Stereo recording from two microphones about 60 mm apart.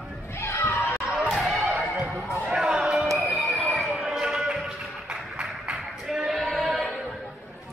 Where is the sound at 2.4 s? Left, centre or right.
Centre.